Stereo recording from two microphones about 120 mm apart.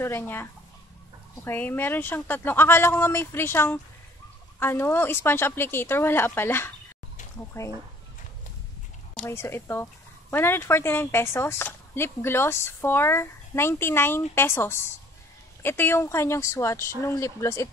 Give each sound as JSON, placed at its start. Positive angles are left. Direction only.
{"t": 0.0, "sound": "a woman's voice", "side_deg": 20}
{"t": 9.2, "sound": "a woman's voice", "side_deg": 20}